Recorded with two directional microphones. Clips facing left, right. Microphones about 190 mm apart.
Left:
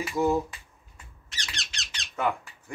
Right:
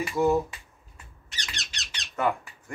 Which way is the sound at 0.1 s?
Centre (ahead or behind).